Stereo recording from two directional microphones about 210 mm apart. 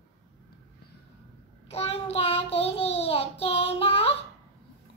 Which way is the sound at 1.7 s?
30° left (ahead or behind).